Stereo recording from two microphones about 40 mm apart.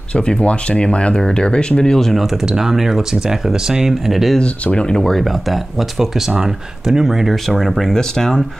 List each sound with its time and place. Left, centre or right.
0.1 s speech: left
2.4 s speech: centre
4.7 s speech: centre
5.1 s speech: centre
7.4 s speech: centre